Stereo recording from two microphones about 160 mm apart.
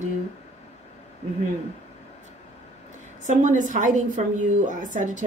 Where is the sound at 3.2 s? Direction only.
50° right (ahead or behind).